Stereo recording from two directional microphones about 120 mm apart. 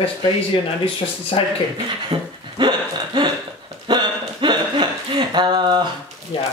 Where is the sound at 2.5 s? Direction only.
40° right (ahead or behind).